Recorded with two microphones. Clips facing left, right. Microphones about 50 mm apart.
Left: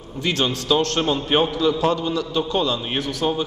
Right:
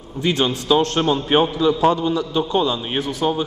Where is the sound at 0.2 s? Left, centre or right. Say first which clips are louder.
Right 3 dB; centre.